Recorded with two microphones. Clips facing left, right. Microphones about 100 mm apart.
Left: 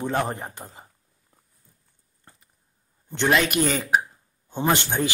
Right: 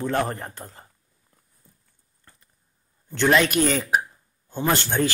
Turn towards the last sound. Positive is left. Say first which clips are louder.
# even
turn(degrees=15)  # may be behind; listen again after turning